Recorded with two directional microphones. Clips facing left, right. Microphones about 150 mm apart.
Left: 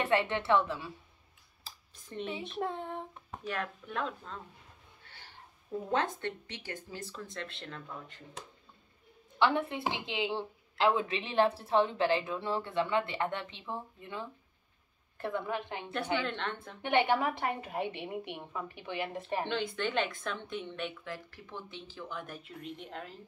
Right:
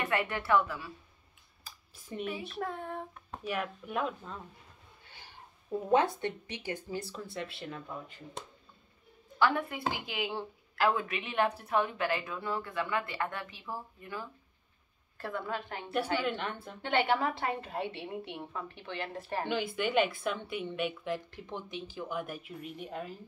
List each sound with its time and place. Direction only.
0.0 s a woman's voice: 25° left (ahead or behind)
2.2 s a woman's voice: 25° left (ahead or behind)
3.3 s a woman's voice: 10° right (ahead or behind)
5.0 s a sound: 15° right (ahead or behind)
5.9 s a woman's voice: 10° right (ahead or behind)
9.4 s a woman's voice: 25° left (ahead or behind)
16.2 s a woman's voice: 10° right (ahead or behind)
16.8 s a woman's voice: 15° left (ahead or behind)
19.4 s a woman's voice: 5° right (ahead or behind)